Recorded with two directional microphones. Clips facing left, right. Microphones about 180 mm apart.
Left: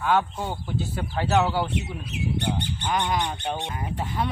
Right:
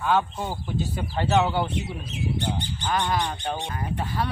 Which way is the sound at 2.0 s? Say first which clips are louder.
Left 2 dB; 60° left (ahead or behind).